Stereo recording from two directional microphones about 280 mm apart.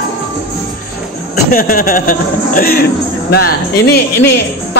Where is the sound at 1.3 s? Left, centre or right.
Left.